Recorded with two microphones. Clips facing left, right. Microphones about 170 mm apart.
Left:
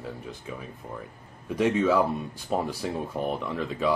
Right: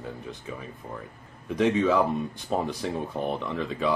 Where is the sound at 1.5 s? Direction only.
5° left (ahead or behind).